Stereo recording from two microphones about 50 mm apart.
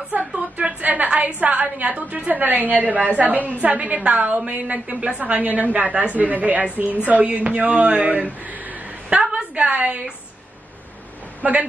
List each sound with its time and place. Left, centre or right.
0.2 s a woman's voice: centre
11.4 s a woman's voice: right